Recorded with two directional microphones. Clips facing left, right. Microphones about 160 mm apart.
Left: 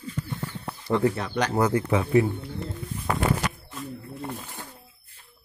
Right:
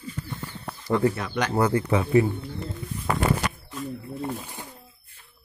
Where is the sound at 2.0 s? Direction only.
Centre (ahead or behind).